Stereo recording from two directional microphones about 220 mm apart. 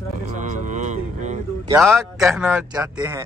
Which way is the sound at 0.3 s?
35° right (ahead or behind).